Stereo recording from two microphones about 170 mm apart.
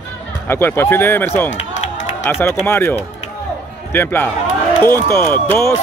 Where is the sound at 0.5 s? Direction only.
15° left (ahead or behind).